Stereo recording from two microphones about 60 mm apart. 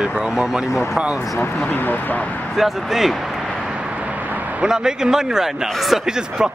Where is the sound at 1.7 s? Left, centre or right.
Left.